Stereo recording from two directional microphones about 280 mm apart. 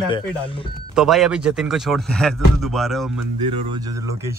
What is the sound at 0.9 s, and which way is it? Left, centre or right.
Speech, centre.